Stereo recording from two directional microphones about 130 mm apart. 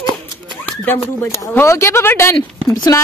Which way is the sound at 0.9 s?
15° left (ahead or behind).